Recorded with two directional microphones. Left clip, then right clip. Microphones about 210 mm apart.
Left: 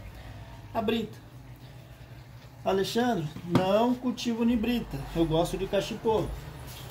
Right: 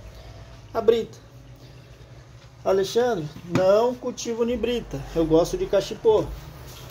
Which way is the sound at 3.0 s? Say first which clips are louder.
Right 6 dB; 15° right (ahead or behind).